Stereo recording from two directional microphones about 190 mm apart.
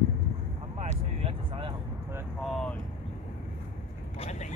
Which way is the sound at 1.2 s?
25° right (ahead or behind).